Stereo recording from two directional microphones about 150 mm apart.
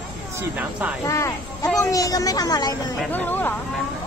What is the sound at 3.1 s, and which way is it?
Speech, 10° left (ahead or behind).